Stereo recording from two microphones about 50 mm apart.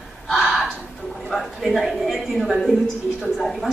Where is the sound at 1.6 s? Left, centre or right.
Centre.